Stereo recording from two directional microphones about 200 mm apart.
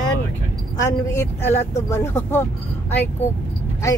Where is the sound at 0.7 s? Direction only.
15° left (ahead or behind).